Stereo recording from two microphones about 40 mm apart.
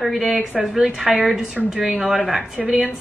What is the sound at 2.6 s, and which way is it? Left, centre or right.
Speech, right.